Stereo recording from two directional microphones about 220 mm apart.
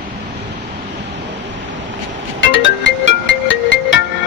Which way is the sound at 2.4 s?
55° left (ahead or behind).